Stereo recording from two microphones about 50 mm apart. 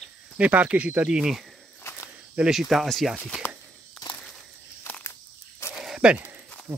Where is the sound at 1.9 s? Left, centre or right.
Left.